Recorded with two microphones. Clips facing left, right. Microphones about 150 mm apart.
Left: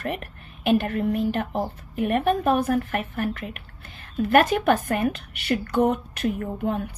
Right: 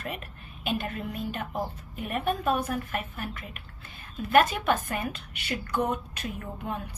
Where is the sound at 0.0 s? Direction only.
60° left (ahead or behind).